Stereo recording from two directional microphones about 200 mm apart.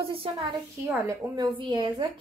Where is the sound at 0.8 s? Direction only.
10° right (ahead or behind).